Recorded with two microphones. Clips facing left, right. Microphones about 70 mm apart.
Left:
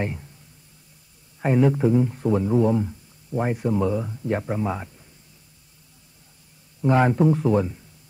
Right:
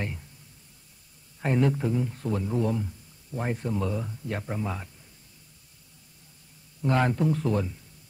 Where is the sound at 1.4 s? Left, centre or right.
Centre.